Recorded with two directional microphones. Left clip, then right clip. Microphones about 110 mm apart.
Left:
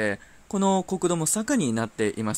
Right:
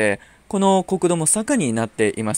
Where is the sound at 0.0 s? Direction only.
40° right (ahead or behind).